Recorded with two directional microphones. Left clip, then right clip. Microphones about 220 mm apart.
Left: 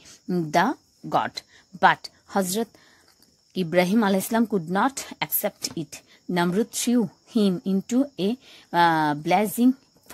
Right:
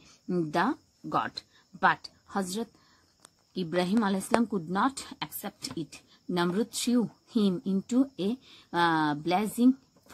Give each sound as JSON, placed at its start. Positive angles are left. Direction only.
{"t": 0.3, "sound": "a woman's voice", "side_deg": 25}